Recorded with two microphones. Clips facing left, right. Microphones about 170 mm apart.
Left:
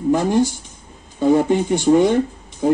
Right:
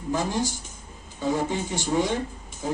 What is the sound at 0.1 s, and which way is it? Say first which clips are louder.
Speech: left 9 dB; 60° left (ahead or behind).